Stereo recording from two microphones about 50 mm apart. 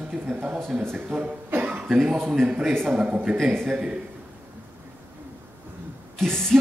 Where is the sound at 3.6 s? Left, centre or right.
Centre.